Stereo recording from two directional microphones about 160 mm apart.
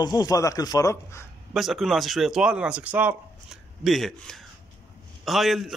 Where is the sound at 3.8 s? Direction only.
Centre (ahead or behind).